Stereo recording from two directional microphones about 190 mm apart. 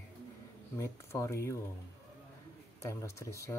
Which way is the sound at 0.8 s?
15° left (ahead or behind).